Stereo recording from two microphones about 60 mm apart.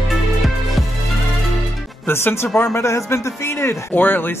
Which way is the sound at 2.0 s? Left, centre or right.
Left.